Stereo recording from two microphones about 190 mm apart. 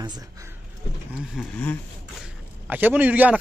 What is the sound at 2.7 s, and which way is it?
Speech, 10° right (ahead or behind).